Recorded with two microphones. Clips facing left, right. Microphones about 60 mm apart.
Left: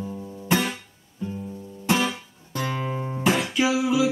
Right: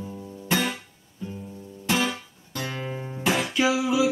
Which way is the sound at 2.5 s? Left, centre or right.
Left.